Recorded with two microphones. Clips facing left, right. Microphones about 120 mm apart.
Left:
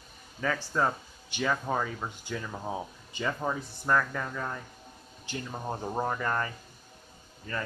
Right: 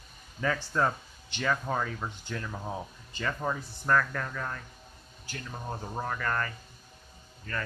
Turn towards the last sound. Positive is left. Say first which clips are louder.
# left 1 dB
turn(degrees=20)  # may be behind; listen again after turning